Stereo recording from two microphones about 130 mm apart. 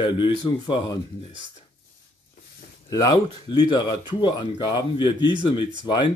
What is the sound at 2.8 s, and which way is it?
Speech, 30° left (ahead or behind).